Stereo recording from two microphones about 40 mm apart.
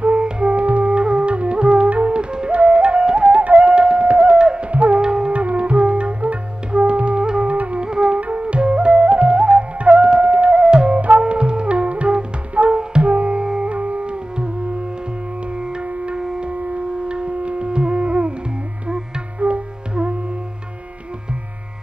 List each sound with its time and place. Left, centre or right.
0.0 s music: right
2.3 s flute: right
5.0 s music: right
5.3 s music: right
7.8 s flute: right
8.2 s music: right
10.3 s music: right
10.6 s music: right
11.0 s music: right
13.4 s music: right
13.7 s music: right
16.1 s music: right
19.4 s music: right